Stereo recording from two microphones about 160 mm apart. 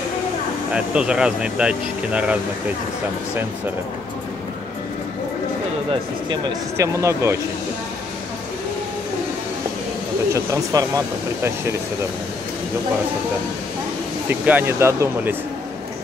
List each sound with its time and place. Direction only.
0.7 s speech: 5° right (ahead or behind)
6.8 s speech: 20° right (ahead or behind)
10.3 s speech: 20° right (ahead or behind)
14.4 s speech: 10° right (ahead or behind)